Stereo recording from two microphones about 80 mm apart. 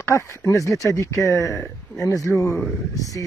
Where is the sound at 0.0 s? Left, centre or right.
Left.